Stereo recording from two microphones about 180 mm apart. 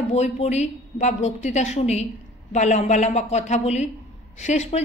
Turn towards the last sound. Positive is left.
turn(degrees=40)  # may be behind; listen again after turning